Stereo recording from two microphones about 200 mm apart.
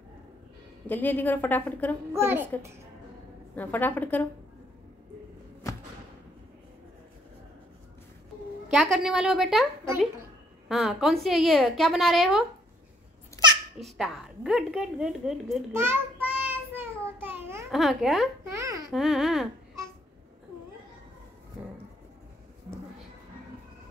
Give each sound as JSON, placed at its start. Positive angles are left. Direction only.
{"t": 0.8, "sound": "a woman's voice", "side_deg": 10}
{"t": 2.1, "sound": "a child's voice", "side_deg": -10}
{"t": 3.5, "sound": "a woman's voice", "side_deg": 10}
{"t": 8.6, "sound": "a woman's voice", "side_deg": 0}
{"t": 10.7, "sound": "a woman's voice", "side_deg": 0}
{"t": 13.4, "sound": "babbling", "side_deg": 20}
{"t": 13.8, "sound": "a woman's voice", "side_deg": 0}
{"t": 15.7, "sound": "child singing", "side_deg": -10}
{"t": 17.6, "sound": "a woman's voice", "side_deg": 0}
{"t": 18.5, "sound": "speech", "side_deg": -15}
{"t": 18.9, "sound": "a woman's voice", "side_deg": 0}